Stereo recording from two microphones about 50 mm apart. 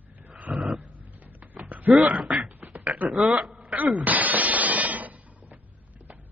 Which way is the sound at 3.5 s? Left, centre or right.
Right.